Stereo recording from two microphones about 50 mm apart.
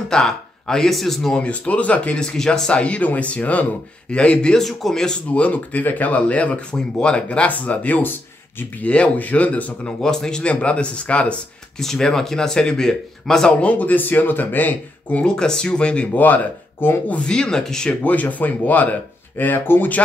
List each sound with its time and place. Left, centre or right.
0.1 s speech: centre
1.3 s speech: left
2.1 s speech: centre
2.8 s speech: left
4.6 s speech: centre
5.3 s speech: left
9.8 s speech: centre
11.8 s speech: centre
13.6 s speech: left
15.2 s speech: centre
16.8 s speech: left
17.2 s speech: centre
18.0 s speech: left